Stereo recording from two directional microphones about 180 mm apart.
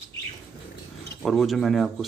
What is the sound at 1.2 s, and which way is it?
Speech, centre (ahead or behind).